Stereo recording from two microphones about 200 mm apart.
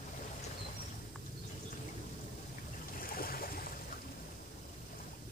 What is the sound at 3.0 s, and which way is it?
Boat, 45° left (ahead or behind).